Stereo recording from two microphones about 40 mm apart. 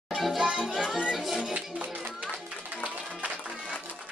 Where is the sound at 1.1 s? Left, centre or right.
Centre.